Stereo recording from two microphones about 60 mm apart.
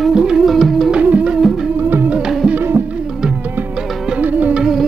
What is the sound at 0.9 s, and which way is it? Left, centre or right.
Music, centre.